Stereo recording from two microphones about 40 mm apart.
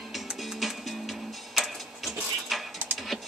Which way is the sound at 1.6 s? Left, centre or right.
Centre.